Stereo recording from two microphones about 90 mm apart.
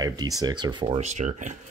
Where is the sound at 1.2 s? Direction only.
90° right.